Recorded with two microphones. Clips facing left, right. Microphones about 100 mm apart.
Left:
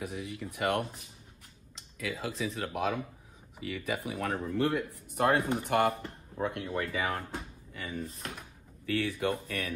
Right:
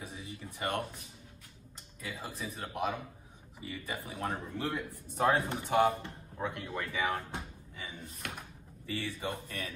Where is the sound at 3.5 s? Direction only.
75° left (ahead or behind).